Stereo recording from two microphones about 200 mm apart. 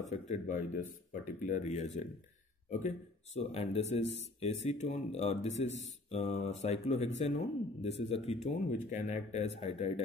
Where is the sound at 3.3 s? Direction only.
30° left (ahead or behind).